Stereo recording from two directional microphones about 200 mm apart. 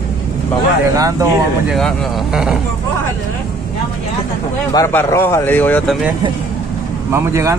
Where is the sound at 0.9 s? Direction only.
15° right (ahead or behind).